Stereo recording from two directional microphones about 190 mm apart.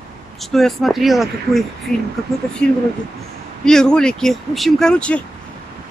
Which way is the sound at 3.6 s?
5° left (ahead or behind).